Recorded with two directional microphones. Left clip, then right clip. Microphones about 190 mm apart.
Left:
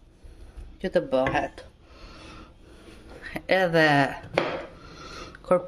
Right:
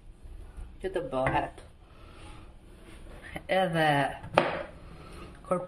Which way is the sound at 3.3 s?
70° left (ahead or behind).